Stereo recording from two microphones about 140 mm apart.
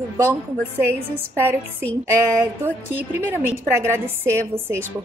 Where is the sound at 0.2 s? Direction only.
20° right (ahead or behind).